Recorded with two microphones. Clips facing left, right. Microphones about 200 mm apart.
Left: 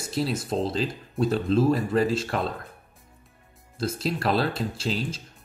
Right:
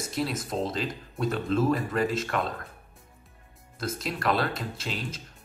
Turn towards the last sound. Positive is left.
turn(degrees=30)  # may be behind; listen again after turning